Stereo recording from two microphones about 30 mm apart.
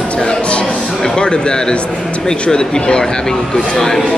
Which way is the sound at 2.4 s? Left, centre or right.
Left.